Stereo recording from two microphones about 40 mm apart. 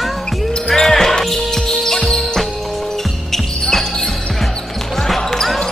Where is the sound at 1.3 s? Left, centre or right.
Centre.